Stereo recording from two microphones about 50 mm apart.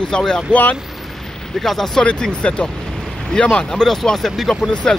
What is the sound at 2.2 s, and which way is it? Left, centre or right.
Speech, centre.